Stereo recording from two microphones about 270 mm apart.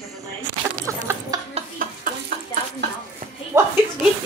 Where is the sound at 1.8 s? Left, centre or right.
Right.